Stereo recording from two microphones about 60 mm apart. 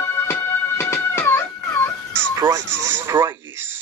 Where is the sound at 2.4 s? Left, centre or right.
Right.